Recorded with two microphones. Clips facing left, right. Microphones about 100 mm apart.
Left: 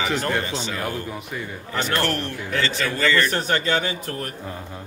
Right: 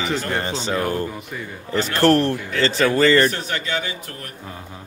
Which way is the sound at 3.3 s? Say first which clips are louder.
Left 4 dB; 40° left (ahead or behind).